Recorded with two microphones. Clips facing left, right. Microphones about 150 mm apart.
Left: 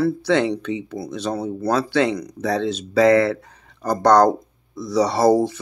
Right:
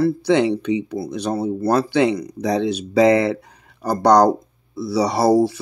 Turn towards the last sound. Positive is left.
turn(degrees=-10)  # may be behind; listen again after turning